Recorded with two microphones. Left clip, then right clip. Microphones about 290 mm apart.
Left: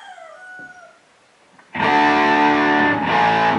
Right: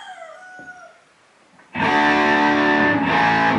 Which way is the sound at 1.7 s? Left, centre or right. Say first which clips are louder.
Left 2 dB; centre.